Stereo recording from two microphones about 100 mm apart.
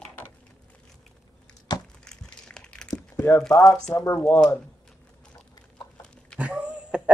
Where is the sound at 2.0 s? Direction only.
5° left (ahead or behind).